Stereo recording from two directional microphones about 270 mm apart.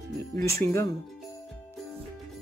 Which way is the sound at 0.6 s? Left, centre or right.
Centre.